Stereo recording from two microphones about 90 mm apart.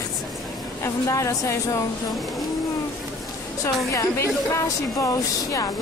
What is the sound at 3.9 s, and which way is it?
A woman's voice, 35° left (ahead or behind).